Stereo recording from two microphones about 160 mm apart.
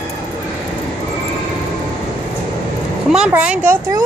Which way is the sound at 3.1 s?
5° right (ahead or behind).